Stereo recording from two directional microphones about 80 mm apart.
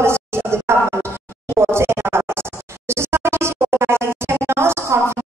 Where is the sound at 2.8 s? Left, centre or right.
Right.